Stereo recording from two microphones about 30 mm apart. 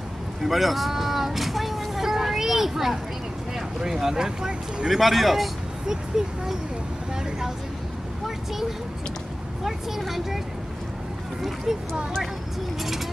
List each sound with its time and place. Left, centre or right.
0.4 s a sound: centre
3.5 s speech: centre
4.8 s speech: centre
5.9 s speech: centre
9.7 s speech: centre